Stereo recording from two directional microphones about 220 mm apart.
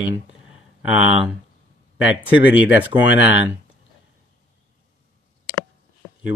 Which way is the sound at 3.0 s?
55° left (ahead or behind).